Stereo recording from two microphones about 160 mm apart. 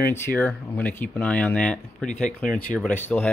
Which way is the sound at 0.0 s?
15° left (ahead or behind).